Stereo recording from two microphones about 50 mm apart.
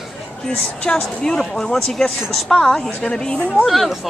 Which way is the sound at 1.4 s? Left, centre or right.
Centre.